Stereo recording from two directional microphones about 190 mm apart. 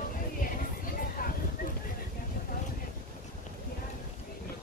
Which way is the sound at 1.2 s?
50° left (ahead or behind).